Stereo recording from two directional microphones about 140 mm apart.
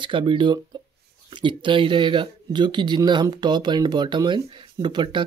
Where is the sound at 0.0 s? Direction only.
35° right (ahead or behind).